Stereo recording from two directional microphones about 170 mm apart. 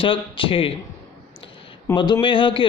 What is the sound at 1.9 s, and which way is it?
Speech, 25° left (ahead or behind).